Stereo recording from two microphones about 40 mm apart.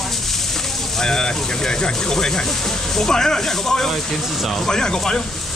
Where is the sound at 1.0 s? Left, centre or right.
Centre.